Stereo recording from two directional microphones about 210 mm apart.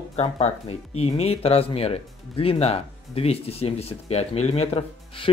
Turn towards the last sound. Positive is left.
turn(degrees=25)  # may be behind; listen again after turning